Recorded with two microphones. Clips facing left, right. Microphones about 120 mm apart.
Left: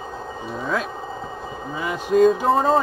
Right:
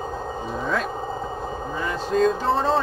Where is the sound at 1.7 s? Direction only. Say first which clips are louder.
Left 4 dB; 10° left (ahead or behind).